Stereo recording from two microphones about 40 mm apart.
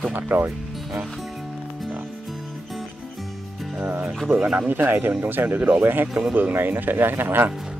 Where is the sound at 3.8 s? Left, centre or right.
Right.